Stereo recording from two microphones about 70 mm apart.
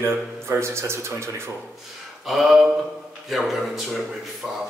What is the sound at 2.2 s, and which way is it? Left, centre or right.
A man's voice, centre.